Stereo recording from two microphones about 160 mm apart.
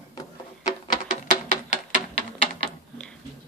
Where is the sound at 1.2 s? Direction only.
50° left (ahead or behind).